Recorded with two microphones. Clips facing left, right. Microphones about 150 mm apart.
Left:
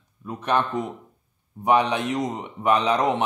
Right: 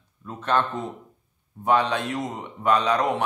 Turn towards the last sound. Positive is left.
turn(degrees=20)  # may be behind; listen again after turning